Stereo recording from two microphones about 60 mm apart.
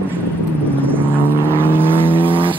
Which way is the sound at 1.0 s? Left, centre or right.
Right.